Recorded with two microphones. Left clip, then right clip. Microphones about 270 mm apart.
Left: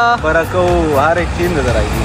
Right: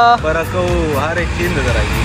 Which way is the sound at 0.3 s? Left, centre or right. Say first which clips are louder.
Left 4 dB; left.